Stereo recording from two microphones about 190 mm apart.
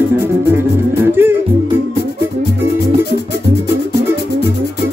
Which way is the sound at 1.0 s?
10° right (ahead or behind).